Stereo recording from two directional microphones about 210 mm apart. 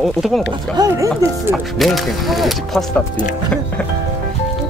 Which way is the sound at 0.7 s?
15° right (ahead or behind).